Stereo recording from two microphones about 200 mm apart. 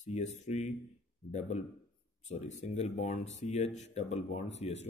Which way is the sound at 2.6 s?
35° left (ahead or behind).